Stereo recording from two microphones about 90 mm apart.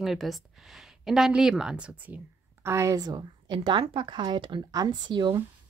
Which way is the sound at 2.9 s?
45° right (ahead or behind).